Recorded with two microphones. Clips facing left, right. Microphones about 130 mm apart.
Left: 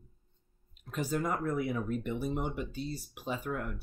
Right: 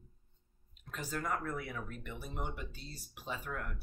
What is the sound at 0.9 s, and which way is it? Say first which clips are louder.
Speech: left 6 dB; 15° left (ahead or behind).